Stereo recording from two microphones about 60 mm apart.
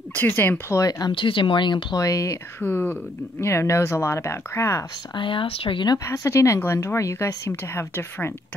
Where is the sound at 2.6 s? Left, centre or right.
Left.